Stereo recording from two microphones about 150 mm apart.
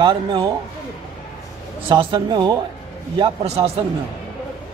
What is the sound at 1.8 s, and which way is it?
Speech, 35° right (ahead or behind).